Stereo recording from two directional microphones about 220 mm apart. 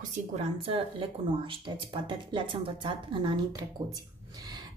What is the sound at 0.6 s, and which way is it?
Speech, 25° right (ahead or behind).